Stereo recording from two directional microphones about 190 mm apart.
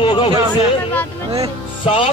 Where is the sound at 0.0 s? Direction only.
25° left (ahead or behind).